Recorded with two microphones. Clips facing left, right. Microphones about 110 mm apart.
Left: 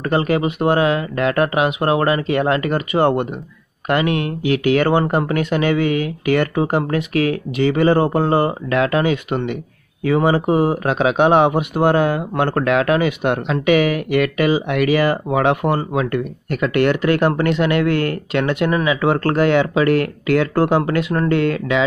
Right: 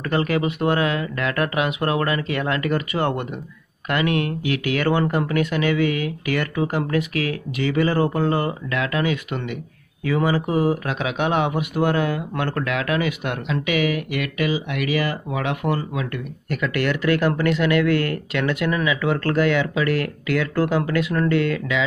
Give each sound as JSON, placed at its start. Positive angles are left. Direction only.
{"t": 0.0, "sound": "speech", "side_deg": 25}
{"t": 16.4, "sound": "speech", "side_deg": 30}